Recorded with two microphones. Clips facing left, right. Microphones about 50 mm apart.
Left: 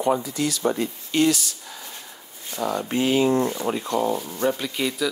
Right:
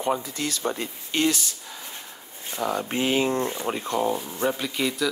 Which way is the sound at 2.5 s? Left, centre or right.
Right.